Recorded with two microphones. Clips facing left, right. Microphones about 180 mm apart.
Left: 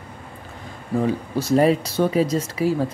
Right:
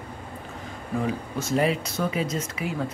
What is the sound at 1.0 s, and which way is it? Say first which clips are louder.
Speech: left 6 dB; 35° left (ahead or behind).